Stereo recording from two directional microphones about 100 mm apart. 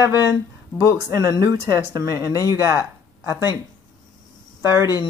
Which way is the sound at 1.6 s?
35° right (ahead or behind).